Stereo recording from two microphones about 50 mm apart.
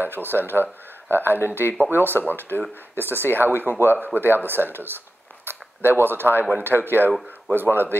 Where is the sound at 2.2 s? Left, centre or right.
Right.